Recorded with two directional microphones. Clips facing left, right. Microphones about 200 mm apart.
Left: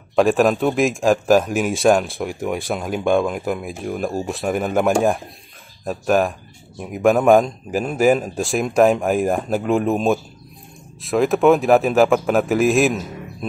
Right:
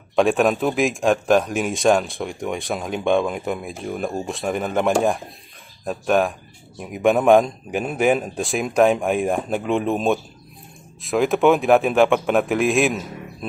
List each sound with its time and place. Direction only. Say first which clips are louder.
0.1 s a man's voice: left 2 dB; centre (ahead or behind)